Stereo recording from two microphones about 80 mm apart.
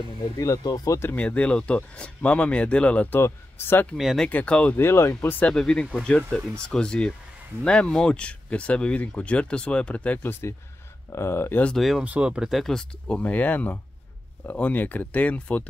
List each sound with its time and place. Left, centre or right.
0.7 s speech: left
1.1 s speech: centre
3.2 s speech: left
3.9 s speech: centre
4.3 s speech: centre
4.7 s speech: left
5.4 s speech: centre
11.1 s speech: left
11.7 s speech: centre
12.0 s speech: centre
13.0 s speech: centre